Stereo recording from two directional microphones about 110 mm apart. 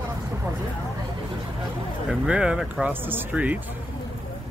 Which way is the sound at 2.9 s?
20° right (ahead or behind).